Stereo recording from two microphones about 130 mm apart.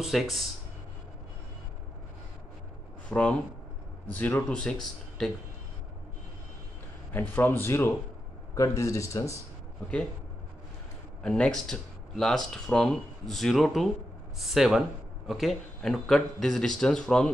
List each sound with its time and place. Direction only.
0.0 s speech: centre (ahead or behind)
3.1 s speech: 10° left (ahead or behind)
7.1 s speech: 15° left (ahead or behind)
11.2 s speech: 5° left (ahead or behind)